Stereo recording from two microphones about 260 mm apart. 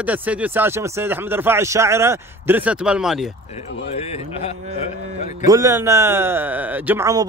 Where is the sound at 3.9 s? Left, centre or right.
Left.